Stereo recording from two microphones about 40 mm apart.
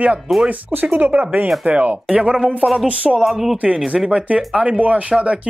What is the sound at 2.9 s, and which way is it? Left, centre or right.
Speech, right.